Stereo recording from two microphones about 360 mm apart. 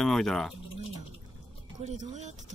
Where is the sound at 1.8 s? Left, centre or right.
Centre.